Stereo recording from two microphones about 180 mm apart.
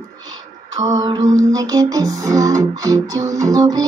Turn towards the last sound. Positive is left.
turn(degrees=-20)  # may be behind; listen again after turning